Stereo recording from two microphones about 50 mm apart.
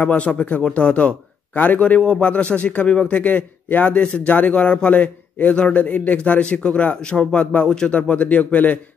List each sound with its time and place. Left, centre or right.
0.0 s a man's voice: left
2.0 s a man's voice: centre
7.6 s a man's voice: centre; by 8.7 s left